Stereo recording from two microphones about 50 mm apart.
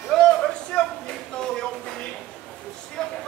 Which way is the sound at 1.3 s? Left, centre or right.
Centre.